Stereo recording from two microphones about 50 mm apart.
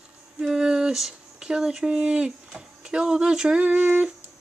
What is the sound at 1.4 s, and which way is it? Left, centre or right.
Speech, centre.